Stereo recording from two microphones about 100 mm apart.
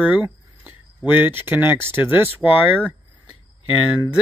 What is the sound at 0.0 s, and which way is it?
Speech, 15° right (ahead or behind).